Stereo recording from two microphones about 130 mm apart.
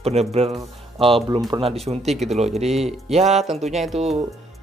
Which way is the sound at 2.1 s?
Centre (ahead or behind).